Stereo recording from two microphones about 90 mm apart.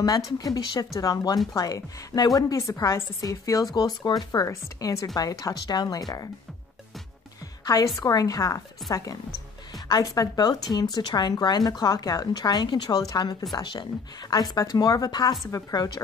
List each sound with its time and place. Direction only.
0.0 s a woman's voice: 45° left (ahead or behind)
7.6 s a woman's voice: 45° left (ahead or behind)